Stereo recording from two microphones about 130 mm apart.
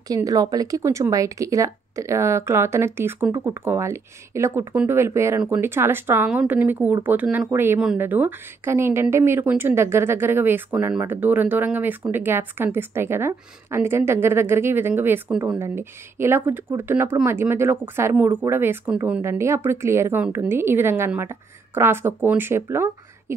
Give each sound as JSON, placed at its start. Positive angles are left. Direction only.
{"t": 0.1, "sound": "speech", "side_deg": -30}